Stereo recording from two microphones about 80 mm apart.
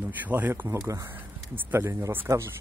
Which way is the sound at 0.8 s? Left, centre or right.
Right.